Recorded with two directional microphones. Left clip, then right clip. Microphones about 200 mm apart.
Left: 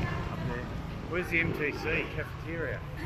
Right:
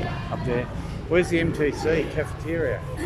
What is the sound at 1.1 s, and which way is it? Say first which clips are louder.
Speech: right 8 dB; 40° right (ahead or behind).